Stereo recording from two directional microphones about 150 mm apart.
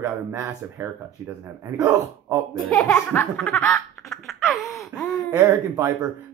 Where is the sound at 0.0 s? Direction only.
20° right (ahead or behind).